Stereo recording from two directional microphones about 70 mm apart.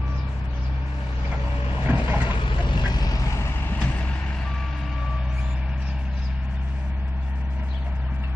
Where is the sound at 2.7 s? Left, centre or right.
Left.